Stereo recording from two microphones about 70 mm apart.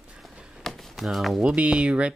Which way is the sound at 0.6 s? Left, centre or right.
Centre.